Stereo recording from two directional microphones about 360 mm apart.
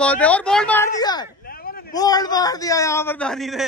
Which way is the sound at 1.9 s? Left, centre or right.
Centre.